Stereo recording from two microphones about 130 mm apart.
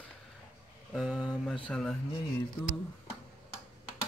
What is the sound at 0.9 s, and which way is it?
Speech, 10° right (ahead or behind).